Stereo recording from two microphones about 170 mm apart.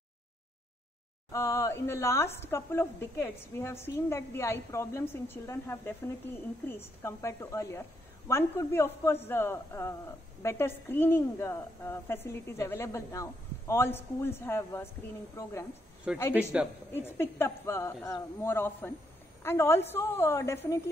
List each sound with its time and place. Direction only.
1.3 s a woman's voice: 20° left (ahead or behind)
16.1 s speech: 5° right (ahead or behind)
16.9 s a woman's voice: 15° left (ahead or behind)